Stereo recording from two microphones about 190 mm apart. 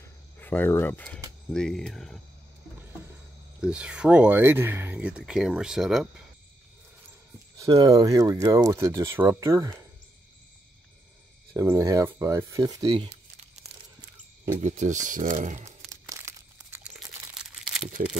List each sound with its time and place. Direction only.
0.0 s cricket: 10° left (ahead or behind)
1.5 s speech: 5° left (ahead or behind)
3.6 s speech: 5° right (ahead or behind)
7.5 s speech: 20° right (ahead or behind)
11.5 s speech: 15° right (ahead or behind)
13.7 s a sound: 60° right (ahead or behind)
14.6 s speech: 40° right (ahead or behind)
16.1 s crumpling: 15° right (ahead or behind)
18.0 s speech: 45° right (ahead or behind)